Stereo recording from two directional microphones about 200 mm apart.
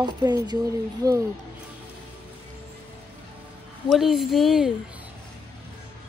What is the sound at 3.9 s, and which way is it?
Speech, centre (ahead or behind).